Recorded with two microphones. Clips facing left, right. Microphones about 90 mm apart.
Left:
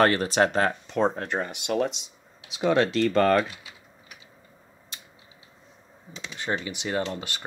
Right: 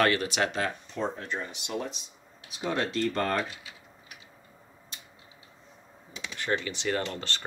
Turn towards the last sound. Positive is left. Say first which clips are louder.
# left 2 dB
turn(degrees=15)  # may be behind; listen again after turning